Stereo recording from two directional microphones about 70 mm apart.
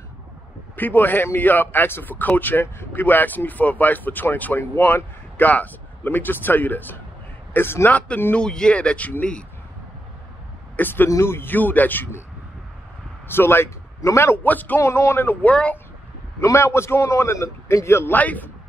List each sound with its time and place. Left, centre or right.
0.7 s a man's voice: left
8.4 s speech: centre
10.8 s a man's voice: left
11.1 s a man's voice: left
13.3 s a man's voice: left
14.4 s a man's voice: left
14.8 s a man's voice: left
15.4 s a man's voice: centre
16.3 s a man's voice: left
18.1 s a man's voice: left